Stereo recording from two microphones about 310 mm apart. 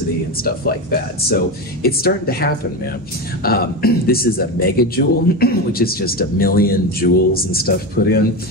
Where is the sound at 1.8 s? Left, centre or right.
Left.